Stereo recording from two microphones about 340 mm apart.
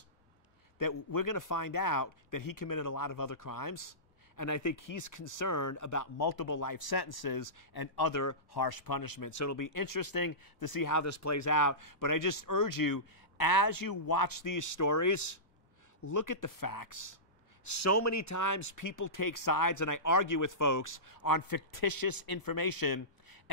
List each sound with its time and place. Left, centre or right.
0.7 s speech: left
4.4 s speech: left
9.3 s speech: left